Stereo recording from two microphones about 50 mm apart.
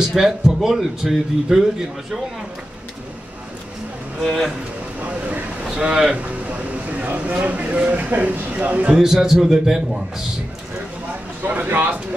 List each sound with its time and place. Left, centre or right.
0.1 s a man's voice: centre
5.0 s vehicle: right
5.8 s speech: centre
6.4 s speech: right
8.9 s speech: centre
11.4 s speech: right